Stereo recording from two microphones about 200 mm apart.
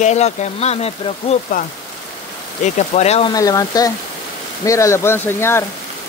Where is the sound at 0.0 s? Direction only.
35° left (ahead or behind).